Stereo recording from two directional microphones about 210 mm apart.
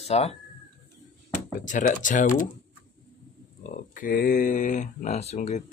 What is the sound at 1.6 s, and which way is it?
Speech, 35° left (ahead or behind).